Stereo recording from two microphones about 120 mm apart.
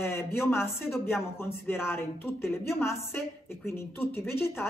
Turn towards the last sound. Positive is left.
turn(degrees=20)  # may be behind; listen again after turning